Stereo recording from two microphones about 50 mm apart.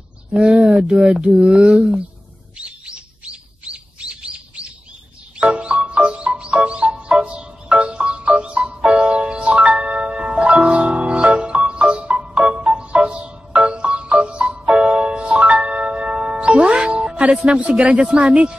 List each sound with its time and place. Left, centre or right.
0.3 s speech: centre
2.5 s chirp: right
5.4 s music: right